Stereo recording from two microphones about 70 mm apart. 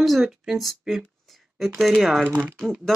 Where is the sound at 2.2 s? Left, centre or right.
Right.